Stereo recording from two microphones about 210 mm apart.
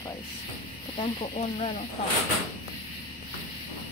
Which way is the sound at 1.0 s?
25° left (ahead or behind).